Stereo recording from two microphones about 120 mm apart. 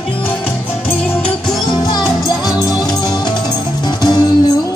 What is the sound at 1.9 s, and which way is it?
Music, 35° left (ahead or behind).